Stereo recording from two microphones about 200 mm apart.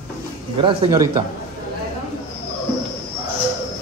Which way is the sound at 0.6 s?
20° right (ahead or behind).